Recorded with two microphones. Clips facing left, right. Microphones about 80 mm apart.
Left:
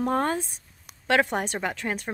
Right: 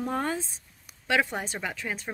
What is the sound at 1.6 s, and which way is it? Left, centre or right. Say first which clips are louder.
Speech: left 4 dB; left.